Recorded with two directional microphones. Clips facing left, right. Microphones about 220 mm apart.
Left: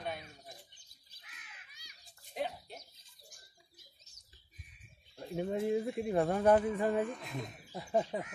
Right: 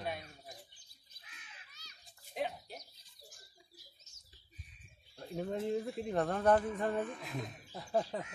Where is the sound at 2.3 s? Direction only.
Centre (ahead or behind).